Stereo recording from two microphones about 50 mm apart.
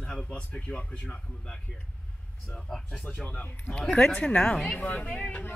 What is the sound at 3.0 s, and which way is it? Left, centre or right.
Speech, left.